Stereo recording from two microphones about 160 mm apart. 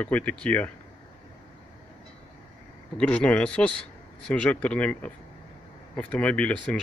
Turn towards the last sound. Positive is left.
turn(degrees=10)  # may be behind; listen again after turning